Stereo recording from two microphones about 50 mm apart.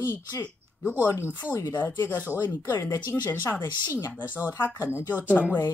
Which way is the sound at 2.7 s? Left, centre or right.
Left.